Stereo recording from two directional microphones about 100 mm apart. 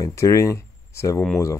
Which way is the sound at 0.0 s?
30° left (ahead or behind).